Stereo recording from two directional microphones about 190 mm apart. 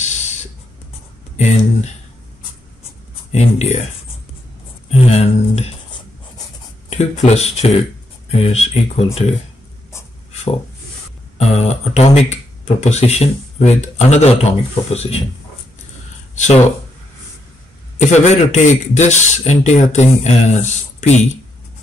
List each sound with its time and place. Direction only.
0.0 s a sound: 40° left (ahead or behind)
1.3 s speech: 35° left (ahead or behind)
3.3 s speech: 35° left (ahead or behind)
4.9 s a sound: 35° left (ahead or behind)
6.9 s speech: 35° left (ahead or behind)
11.3 s speech: 35° left (ahead or behind)
18.0 s speech: 35° left (ahead or behind)